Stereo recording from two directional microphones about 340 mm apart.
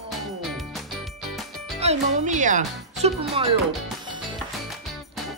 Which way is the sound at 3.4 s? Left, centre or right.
Centre.